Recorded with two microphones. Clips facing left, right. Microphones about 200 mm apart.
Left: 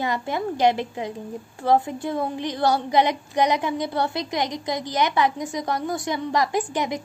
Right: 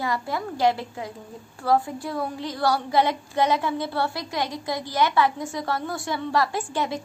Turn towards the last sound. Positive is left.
turn(degrees=15)  # may be behind; listen again after turning